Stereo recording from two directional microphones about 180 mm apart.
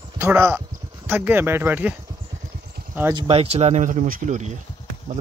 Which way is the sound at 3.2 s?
35° right (ahead or behind).